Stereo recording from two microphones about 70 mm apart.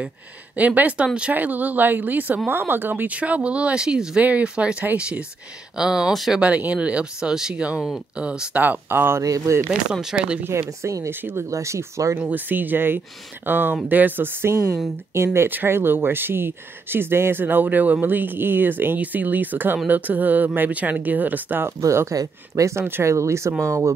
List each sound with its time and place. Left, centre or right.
0.6 s speech: right; by 6.4 s centre
6.4 s speech: right
9.2 s speech: right
10.1 s speech: centre
10.8 s speech: right
11.1 s speech: right
11.5 s speech: right
12.2 s speech: right
21.8 s speech: right